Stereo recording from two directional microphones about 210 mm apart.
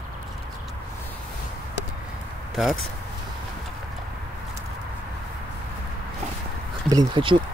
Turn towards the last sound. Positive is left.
turn(degrees=-20)  # may be behind; listen again after turning